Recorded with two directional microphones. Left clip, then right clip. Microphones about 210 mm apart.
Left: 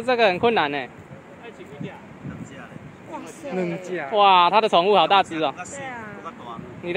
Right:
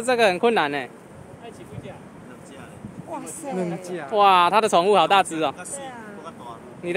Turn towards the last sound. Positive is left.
turn(degrees=-5)  # may be behind; listen again after turning